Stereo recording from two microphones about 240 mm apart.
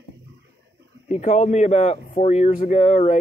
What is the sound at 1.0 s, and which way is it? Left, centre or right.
Speech, left.